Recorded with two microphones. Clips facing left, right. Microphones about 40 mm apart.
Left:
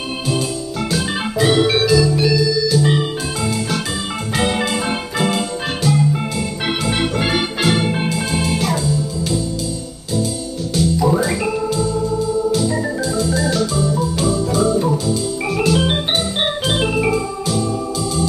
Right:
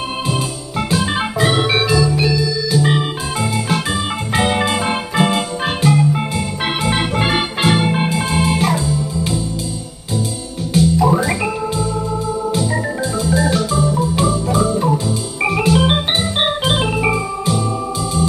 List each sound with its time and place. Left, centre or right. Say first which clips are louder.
0.3 s organ: left 1 dB; centre
4.4 s music: right 2 dB; centre
6.3 s organ: right 1 dB; centre
8.9 s music: even; right
10.8 s organ: right 2 dB; centre
13.2 s organ: right 2 dB; centre